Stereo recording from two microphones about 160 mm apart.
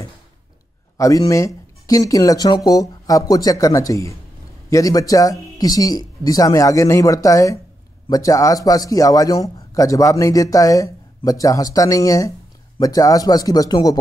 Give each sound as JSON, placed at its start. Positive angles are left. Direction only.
{"t": 0.9, "sound": "a man's voice", "side_deg": 20}